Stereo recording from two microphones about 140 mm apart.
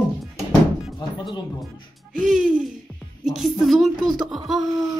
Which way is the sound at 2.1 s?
Centre (ahead or behind).